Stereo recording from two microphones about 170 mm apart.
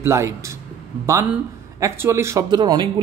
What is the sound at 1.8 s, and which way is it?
Speech, 15° right (ahead or behind).